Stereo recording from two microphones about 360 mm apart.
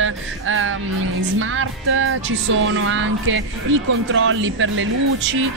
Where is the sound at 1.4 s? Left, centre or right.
Right.